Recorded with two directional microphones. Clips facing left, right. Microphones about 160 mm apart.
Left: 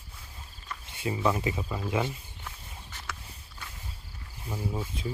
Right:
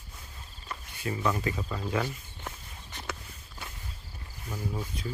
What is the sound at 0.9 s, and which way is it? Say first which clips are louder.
Speech: left 2 dB; 20° left (ahead or behind).